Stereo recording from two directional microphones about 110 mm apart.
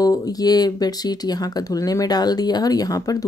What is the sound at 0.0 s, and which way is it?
Speech, 35° left (ahead or behind).